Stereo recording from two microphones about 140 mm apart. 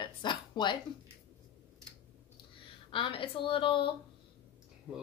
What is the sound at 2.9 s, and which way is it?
Speech, 40° left (ahead or behind).